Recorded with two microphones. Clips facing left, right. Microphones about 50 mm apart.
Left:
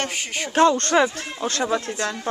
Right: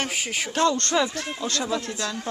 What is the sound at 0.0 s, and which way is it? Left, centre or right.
Speech, centre.